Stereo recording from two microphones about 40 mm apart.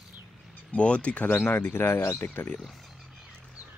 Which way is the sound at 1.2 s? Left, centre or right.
Left.